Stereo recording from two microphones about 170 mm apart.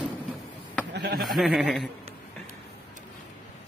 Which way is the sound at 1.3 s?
Centre (ahead or behind).